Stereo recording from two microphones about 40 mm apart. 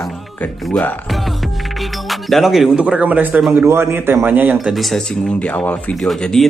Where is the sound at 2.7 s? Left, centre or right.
Right.